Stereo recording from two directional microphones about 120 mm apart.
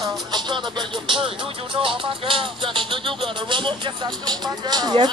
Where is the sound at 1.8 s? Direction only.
45° right (ahead or behind).